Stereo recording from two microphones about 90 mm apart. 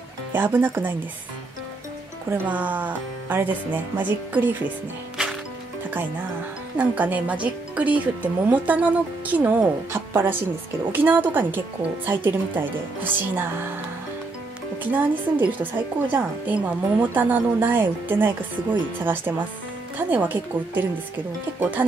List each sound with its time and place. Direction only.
0.3 s a woman's voice: 25° right (ahead or behind)
2.2 s a woman's voice: 20° right (ahead or behind)
6.8 s speech: 20° right (ahead or behind)
10.9 s a woman's voice: 20° right (ahead or behind)
14.8 s a woman's voice: 20° right (ahead or behind)